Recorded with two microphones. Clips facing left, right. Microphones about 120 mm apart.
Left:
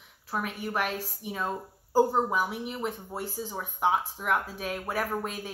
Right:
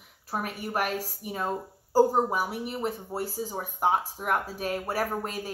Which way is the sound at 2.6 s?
40° right (ahead or behind).